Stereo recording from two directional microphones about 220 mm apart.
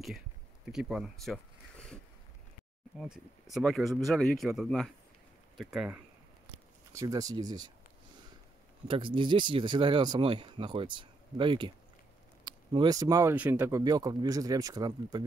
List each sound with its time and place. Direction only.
0.7 s speech: centre (ahead or behind)
3.0 s speech: centre (ahead or behind)
6.9 s speech: 15° right (ahead or behind)
8.8 s speech: 25° right (ahead or behind)